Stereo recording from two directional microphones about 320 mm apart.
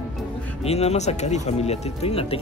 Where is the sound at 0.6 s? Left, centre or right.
Centre.